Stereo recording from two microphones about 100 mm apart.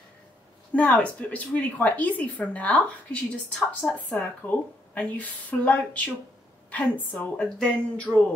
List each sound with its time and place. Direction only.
0.7 s a woman's voice: 15° left (ahead or behind)